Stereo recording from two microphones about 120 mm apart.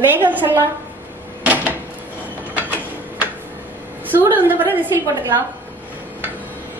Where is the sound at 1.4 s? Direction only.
10° right (ahead or behind).